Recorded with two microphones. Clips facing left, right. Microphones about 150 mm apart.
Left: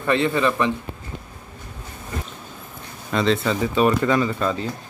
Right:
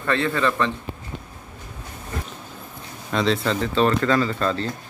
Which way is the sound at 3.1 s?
Centre (ahead or behind).